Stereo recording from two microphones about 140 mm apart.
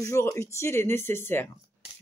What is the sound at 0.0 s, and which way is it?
Speech, 20° left (ahead or behind).